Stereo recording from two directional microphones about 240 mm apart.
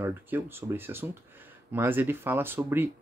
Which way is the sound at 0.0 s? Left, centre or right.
Centre.